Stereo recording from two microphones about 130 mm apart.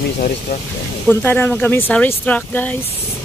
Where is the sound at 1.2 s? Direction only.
10° left (ahead or behind).